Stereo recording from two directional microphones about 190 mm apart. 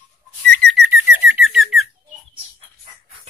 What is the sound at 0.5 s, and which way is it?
Whistling, 5° left (ahead or behind).